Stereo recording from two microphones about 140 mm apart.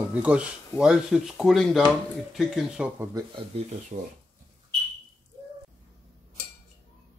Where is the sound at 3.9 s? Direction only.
55° right (ahead or behind).